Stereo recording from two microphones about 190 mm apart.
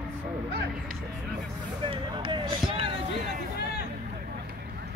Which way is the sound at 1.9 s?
25° right (ahead or behind).